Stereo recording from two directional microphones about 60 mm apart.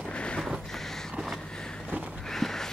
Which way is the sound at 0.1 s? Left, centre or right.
Centre.